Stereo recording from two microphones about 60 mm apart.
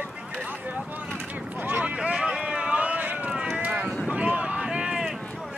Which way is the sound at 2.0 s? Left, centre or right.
Centre.